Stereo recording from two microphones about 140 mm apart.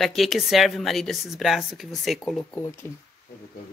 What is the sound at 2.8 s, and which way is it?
Speech, 15° left (ahead or behind).